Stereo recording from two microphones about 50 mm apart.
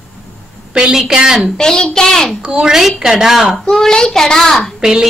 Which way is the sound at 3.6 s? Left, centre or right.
Centre.